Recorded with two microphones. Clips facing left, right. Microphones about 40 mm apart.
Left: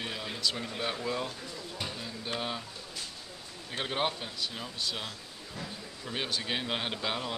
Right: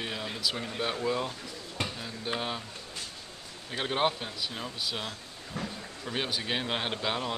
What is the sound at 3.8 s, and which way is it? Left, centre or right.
Speech, centre.